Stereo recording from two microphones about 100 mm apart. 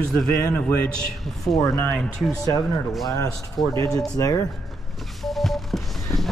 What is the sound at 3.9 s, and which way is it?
Speech, 5° left (ahead or behind).